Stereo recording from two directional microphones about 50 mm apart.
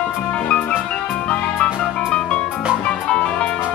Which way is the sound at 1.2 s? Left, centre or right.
Left.